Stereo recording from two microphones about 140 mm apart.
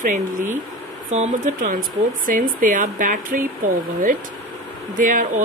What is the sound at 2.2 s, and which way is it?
Speech, 75° right (ahead or behind).